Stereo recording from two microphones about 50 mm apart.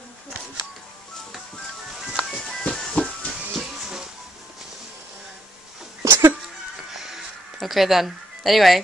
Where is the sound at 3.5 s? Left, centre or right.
Centre.